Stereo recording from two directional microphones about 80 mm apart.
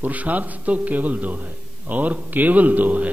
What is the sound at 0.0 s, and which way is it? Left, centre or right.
A man's voice, centre.